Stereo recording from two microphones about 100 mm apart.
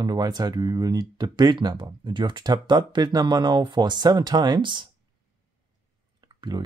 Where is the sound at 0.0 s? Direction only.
45° right (ahead or behind).